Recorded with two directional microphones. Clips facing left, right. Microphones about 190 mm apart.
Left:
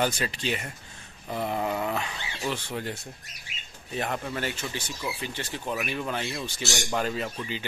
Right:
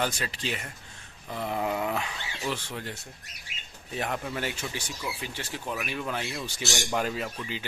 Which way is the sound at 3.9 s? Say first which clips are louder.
Left 1 dB; centre (ahead or behind).